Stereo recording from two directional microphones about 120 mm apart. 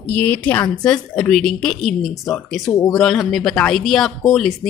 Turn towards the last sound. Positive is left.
turn(degrees=0)  # may be behind; listen again after turning